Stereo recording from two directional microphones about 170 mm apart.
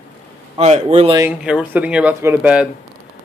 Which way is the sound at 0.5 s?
35° right (ahead or behind).